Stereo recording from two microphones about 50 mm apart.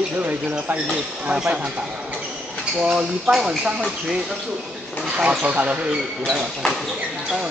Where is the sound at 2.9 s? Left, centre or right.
Centre.